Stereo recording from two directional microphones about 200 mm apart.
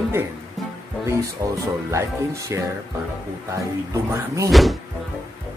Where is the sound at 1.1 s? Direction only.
15° right (ahead or behind).